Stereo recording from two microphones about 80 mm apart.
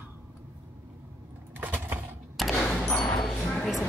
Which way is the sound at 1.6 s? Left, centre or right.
Right.